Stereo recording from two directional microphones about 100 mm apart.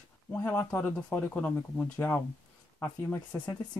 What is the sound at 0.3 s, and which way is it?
Speech, 20° left (ahead or behind).